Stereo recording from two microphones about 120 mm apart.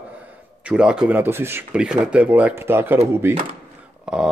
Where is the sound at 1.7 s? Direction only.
10° right (ahead or behind).